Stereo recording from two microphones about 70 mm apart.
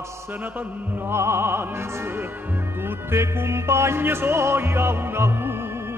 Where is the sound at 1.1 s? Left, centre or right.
Right.